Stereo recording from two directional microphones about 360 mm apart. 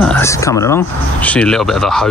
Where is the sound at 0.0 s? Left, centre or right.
Centre.